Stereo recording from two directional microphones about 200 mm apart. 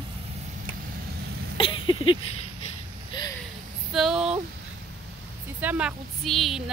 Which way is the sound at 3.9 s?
Centre (ahead or behind).